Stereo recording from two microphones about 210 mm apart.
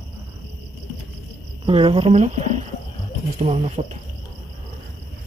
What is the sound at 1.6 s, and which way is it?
Cricket, 25° right (ahead or behind).